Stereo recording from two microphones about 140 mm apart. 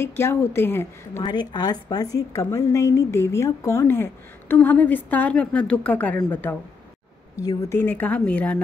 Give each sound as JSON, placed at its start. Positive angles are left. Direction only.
{"t": 0.0, "sound": "a woman's voice", "side_deg": 15}
{"t": 1.2, "sound": "a woman's voice", "side_deg": 30}
{"t": 7.4, "sound": "a woman's voice", "side_deg": 15}